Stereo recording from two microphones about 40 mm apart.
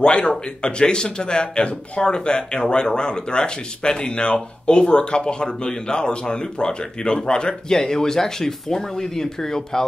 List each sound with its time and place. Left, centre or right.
0.0 s speech: left